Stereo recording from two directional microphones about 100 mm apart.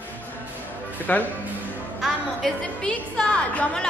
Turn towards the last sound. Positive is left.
turn(degrees=10)  # may be behind; listen again after turning